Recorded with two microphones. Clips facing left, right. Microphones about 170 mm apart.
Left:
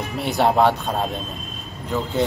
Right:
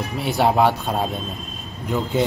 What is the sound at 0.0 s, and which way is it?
Speech, centre (ahead or behind).